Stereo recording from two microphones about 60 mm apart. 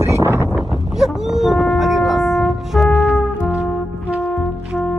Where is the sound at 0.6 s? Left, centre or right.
Centre.